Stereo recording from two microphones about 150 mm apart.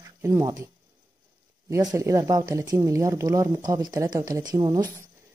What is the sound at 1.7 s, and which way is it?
Speech, 20° right (ahead or behind).